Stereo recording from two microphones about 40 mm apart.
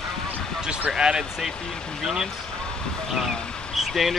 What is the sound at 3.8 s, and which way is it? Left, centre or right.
Speech, centre.